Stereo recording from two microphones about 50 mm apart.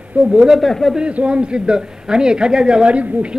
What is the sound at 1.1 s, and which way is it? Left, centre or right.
A man's voice, right.